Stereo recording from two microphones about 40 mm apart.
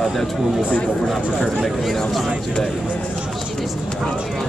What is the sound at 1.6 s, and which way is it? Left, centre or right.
Speech, centre.